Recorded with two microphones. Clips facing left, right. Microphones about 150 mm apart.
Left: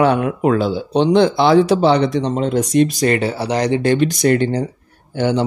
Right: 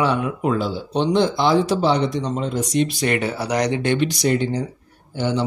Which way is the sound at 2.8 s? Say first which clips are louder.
Left 5 dB; 40° left (ahead or behind).